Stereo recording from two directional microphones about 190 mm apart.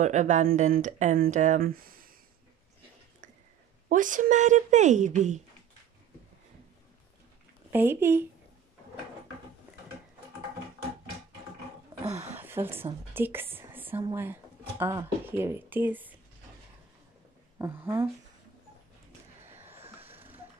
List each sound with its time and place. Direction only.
0.0 s speech: 40° right (ahead or behind)
3.9 s speech: 45° right (ahead or behind)
7.7 s speech: 10° right (ahead or behind)
12.4 s a sound: 10° right (ahead or behind)
13.1 s a woman's voice: 10° right (ahead or behind)
17.6 s speech: 10° right (ahead or behind)
19.5 s vehicle: 10° right (ahead or behind)
20.0 s a sound: 10° right (ahead or behind)